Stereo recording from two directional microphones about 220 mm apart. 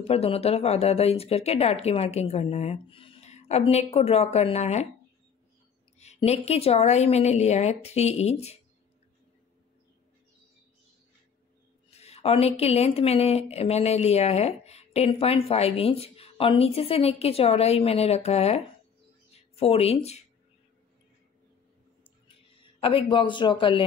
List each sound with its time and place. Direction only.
0.0 s speech: 25° left (ahead or behind)
5.9 s speech: 30° left (ahead or behind)
11.9 s speech: 30° left (ahead or behind)
22.8 s speech: 25° left (ahead or behind)